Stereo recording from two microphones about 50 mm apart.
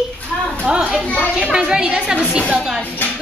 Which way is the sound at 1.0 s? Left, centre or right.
Left.